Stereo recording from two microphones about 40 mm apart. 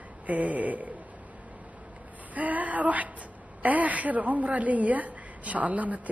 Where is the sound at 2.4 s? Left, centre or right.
Right.